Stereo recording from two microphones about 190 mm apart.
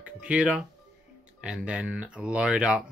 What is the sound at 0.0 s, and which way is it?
Speech, 5° right (ahead or behind).